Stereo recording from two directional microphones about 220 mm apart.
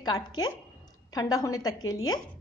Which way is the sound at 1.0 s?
15° left (ahead or behind).